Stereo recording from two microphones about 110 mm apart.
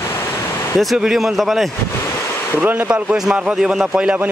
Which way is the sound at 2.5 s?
15° right (ahead or behind).